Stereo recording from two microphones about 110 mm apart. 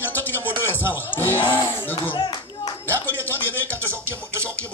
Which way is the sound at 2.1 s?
45° left (ahead or behind).